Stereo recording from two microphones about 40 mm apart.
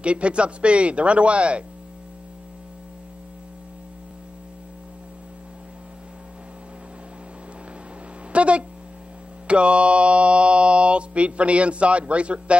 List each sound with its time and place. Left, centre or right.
0.0 s speech: right
8.3 s a sound: right
9.5 s speech: right